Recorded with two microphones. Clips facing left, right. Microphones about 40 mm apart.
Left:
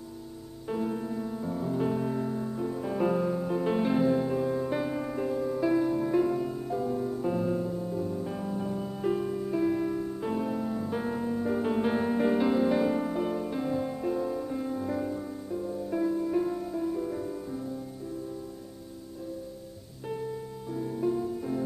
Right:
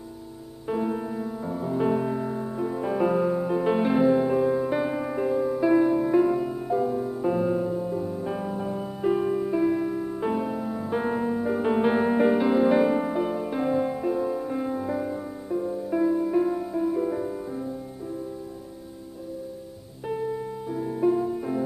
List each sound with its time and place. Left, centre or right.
0.7 s music: centre
9.6 s music: centre
20.1 s music: centre